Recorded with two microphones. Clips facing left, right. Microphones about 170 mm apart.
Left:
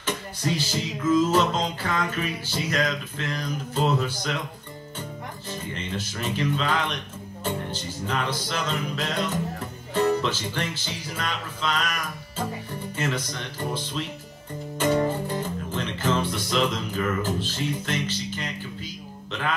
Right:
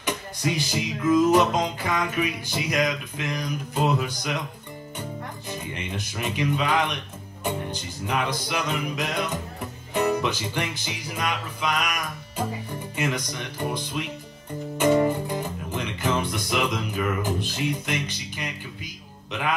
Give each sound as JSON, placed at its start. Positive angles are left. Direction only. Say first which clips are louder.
{"t": 0.0, "sound": "music", "louder": "right 1 dB", "side_deg": -15}
{"t": 5.5, "sound": "music", "louder": "left 1 dB", "side_deg": -15}